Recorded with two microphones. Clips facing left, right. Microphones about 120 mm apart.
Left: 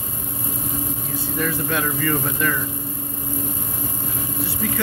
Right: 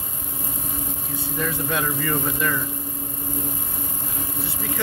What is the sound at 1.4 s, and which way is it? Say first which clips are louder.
Speech: left 2 dB; 20° right (ahead or behind).